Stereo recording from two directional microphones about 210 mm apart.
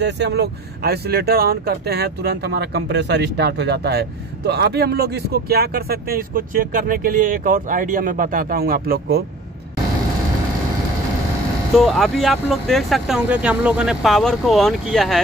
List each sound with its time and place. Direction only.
0.0 s speech: 50° right (ahead or behind)
11.7 s speech: centre (ahead or behind)